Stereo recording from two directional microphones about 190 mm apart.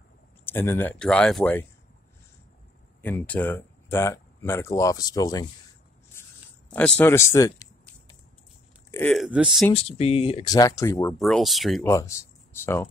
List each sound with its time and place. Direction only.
0.5 s speech: 10° left (ahead or behind)
3.0 s speech: 10° left (ahead or behind)
6.2 s a sound: 10° left (ahead or behind)
6.7 s speech: 5° left (ahead or behind)
8.9 s speech: 5° left (ahead or behind)
9.8 s speech: 30° left (ahead or behind); by 11.1 s 15° left (ahead or behind)
11.1 s speech: centre (ahead or behind)
11.8 s speech: 15° left (ahead or behind)